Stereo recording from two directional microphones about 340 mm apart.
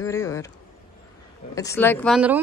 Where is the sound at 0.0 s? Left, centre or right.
Centre.